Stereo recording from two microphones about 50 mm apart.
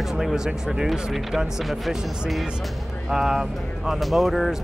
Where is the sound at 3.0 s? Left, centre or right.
Centre.